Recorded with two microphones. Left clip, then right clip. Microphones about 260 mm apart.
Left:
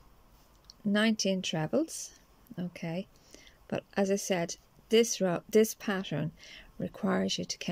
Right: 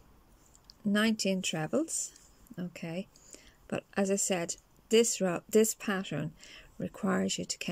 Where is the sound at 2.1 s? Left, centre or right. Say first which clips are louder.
Left 1 dB; centre.